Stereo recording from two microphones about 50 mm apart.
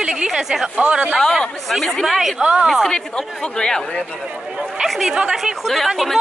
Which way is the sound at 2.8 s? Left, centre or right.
Centre.